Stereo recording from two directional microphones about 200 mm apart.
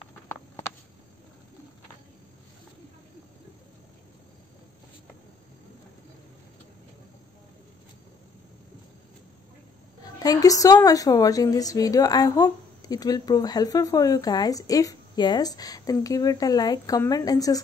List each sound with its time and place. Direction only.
10.1 s a woman's voice: 15° left (ahead or behind)